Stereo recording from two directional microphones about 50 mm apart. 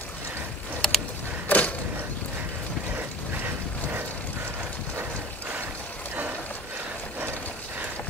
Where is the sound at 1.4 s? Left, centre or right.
Left.